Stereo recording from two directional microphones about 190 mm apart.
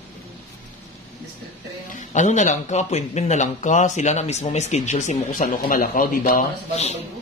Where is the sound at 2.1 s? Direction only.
40° left (ahead or behind).